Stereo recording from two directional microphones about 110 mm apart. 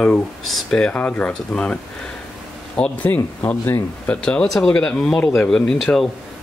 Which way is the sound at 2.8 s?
15° left (ahead or behind).